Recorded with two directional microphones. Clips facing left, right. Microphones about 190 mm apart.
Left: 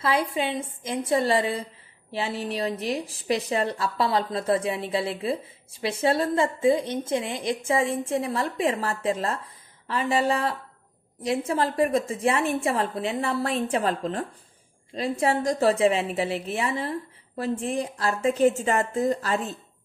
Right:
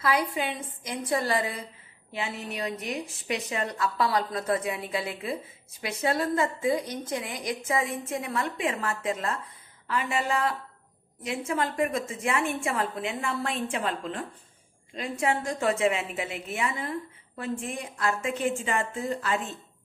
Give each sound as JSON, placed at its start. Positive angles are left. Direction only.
{"t": 0.0, "sound": "a woman's voice", "side_deg": 25}